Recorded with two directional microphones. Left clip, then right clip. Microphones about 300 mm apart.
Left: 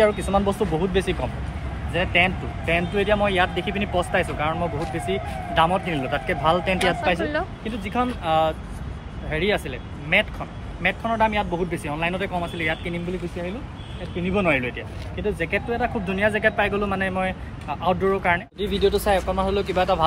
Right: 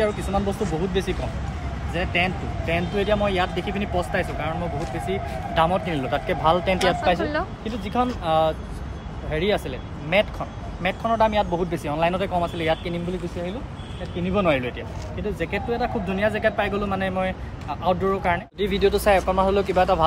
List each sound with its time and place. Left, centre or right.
0.0 s speech: centre
14.2 s speech: centre
18.6 s speech: centre
18.9 s speech: centre